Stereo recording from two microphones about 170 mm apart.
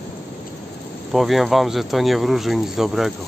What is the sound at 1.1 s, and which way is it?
Speech, centre (ahead or behind).